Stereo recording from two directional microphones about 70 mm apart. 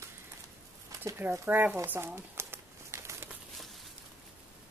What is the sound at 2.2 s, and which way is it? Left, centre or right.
Crumpling, right.